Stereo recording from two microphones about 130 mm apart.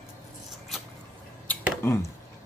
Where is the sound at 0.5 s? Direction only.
Centre (ahead or behind).